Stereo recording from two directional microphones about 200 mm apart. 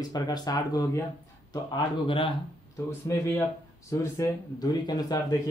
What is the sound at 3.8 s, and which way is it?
Speech, 15° left (ahead or behind).